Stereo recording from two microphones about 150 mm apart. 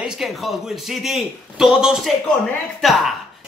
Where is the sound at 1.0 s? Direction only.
5° right (ahead or behind).